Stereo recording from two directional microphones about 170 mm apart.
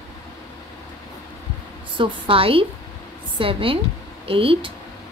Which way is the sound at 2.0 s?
30° right (ahead or behind).